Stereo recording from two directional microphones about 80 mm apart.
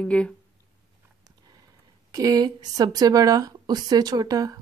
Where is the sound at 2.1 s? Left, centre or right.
Right.